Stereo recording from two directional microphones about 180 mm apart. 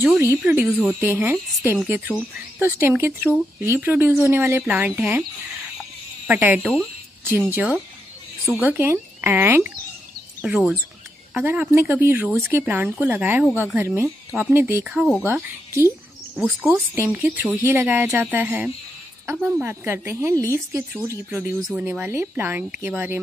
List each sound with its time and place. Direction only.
0.0 s speech: 10° right (ahead or behind)
5.8 s insect: 5° right (ahead or behind)
7.2 s speech: 10° right (ahead or behind)
16.3 s speech: 10° right (ahead or behind)